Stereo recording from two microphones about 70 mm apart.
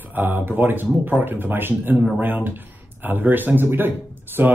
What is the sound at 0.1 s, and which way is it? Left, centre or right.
Speech, right.